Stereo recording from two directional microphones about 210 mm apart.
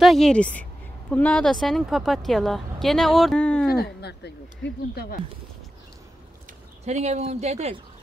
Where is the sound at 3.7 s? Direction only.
50° left (ahead or behind).